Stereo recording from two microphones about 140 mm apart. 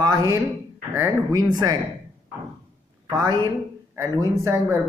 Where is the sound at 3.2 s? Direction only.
30° right (ahead or behind).